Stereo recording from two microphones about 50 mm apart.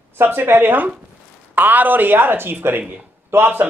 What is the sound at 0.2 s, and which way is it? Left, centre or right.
Speech, right.